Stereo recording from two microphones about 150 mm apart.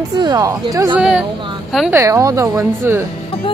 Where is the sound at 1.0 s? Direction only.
5° right (ahead or behind).